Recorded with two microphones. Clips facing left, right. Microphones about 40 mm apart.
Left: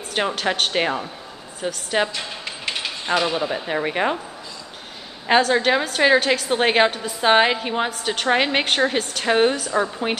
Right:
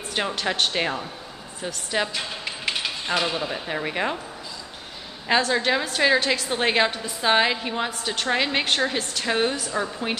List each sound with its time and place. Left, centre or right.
0.1 s a woman's voice: centre
2.1 s speech: centre
5.5 s a woman's voice: centre